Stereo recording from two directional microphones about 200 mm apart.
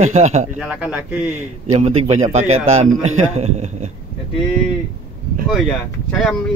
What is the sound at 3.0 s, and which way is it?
Speech, 35° right (ahead or behind).